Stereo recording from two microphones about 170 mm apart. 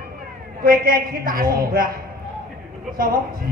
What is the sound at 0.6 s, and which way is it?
A woman's voice, 60° right (ahead or behind).